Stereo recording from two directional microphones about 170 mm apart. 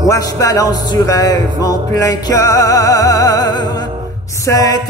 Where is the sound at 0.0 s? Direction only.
20° left (ahead or behind).